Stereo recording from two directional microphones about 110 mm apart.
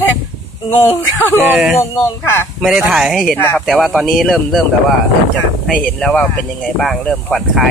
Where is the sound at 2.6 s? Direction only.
5° right (ahead or behind).